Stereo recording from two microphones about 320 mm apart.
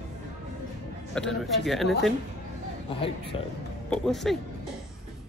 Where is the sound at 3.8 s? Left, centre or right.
Centre.